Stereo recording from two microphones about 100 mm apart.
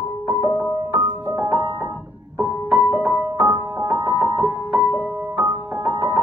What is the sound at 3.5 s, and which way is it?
Music, 40° right (ahead or behind).